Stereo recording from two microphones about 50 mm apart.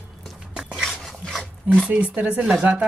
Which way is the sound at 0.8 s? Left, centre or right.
Centre.